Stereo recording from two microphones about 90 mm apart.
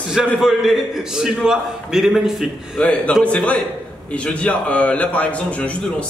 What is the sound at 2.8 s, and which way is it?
A man's voice, 10° left (ahead or behind).